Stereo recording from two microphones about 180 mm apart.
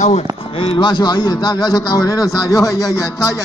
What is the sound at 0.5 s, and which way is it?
A man's voice, 30° left (ahead or behind).